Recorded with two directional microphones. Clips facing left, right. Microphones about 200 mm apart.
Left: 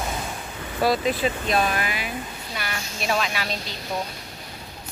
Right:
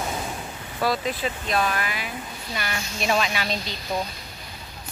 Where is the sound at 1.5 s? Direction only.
25° left (ahead or behind).